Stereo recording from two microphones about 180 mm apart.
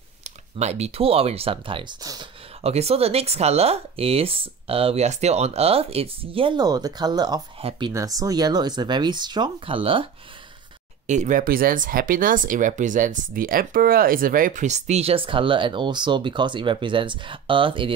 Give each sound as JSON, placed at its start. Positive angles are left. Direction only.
{"t": 0.2, "sound": "speech", "side_deg": -40}
{"t": 2.6, "sound": "speech", "side_deg": -35}
{"t": 11.1, "sound": "speech", "side_deg": -45}